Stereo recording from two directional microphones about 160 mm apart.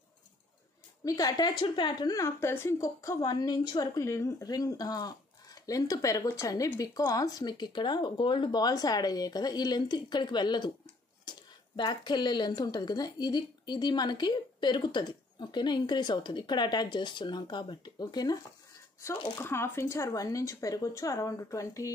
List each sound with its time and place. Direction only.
1.0 s speech: 25° left (ahead or behind)
19.3 s speech: 15° left (ahead or behind)